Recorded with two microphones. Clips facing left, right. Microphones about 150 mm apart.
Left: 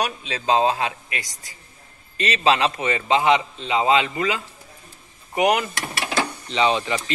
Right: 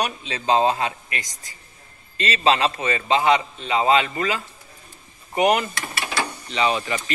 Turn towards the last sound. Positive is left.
turn(degrees=25)  # may be behind; listen again after turning